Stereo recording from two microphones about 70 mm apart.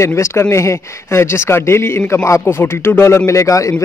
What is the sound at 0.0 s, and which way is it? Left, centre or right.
Speech, left.